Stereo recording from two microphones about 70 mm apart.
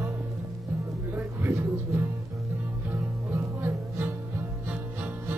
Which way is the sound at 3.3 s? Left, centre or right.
Right.